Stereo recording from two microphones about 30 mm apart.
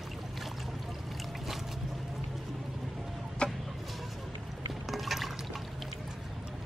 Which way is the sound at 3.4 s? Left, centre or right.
Left.